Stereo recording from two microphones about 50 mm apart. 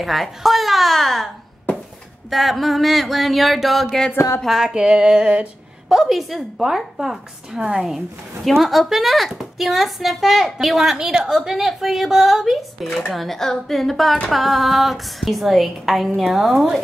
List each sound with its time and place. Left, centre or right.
0.0 s a child's voice: centre; by 5.5 s right
5.9 s a woman's voice: centre
8.5 s speech: centre